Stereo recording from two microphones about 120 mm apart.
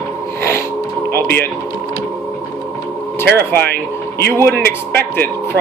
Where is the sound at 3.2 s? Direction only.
20° left (ahead or behind).